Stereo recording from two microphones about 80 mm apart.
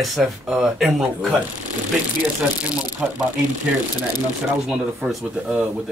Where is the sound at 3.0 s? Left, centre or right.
Centre.